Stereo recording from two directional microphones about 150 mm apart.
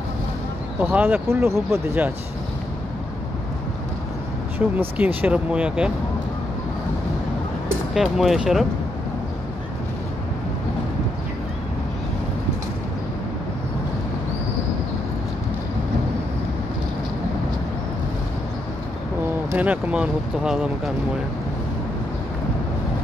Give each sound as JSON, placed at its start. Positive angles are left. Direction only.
{"t": 0.7, "sound": "speech", "side_deg": -10}
{"t": 4.6, "sound": "speech", "side_deg": -10}
{"t": 7.9, "sound": "speech", "side_deg": 0}
{"t": 19.5, "sound": "speech", "side_deg": -10}